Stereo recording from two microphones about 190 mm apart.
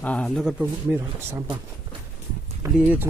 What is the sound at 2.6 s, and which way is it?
Speech, 15° right (ahead or behind).